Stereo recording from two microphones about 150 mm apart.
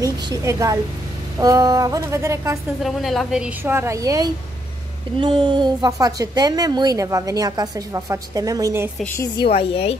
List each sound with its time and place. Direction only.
0.0 s a woman's voice: 20° right (ahead or behind)
2.8 s a woman's voice: centre (ahead or behind); by 8.9 s 20° right (ahead or behind)
9.0 s a woman's voice: 15° left (ahead or behind)
9.4 s speech: 35° left (ahead or behind)